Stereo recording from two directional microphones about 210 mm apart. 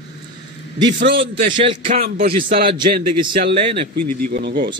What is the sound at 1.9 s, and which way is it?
Speech, 35° right (ahead or behind).